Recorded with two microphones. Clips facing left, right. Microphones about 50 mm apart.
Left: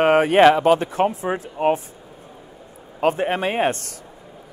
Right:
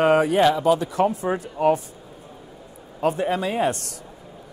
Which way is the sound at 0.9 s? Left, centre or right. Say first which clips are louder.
Left 1 dB; left.